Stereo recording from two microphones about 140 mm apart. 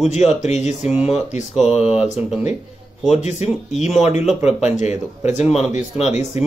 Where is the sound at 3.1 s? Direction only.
55° left (ahead or behind).